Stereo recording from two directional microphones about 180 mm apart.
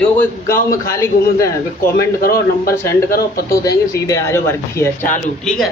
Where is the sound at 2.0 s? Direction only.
55° left (ahead or behind).